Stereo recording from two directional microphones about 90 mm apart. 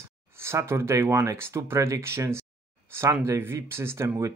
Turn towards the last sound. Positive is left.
turn(degrees=-30)  # may be behind; listen again after turning